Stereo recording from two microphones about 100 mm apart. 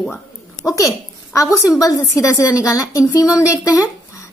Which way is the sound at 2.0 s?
30° left (ahead or behind).